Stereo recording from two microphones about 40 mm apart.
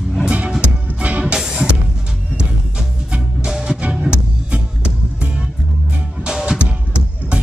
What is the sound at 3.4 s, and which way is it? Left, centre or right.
Music, centre.